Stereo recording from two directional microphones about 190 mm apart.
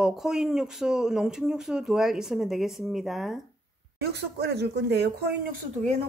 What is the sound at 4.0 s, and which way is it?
Speech, 60° right (ahead or behind).